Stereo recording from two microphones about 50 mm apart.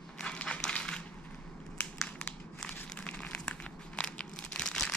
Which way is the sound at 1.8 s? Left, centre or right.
Left.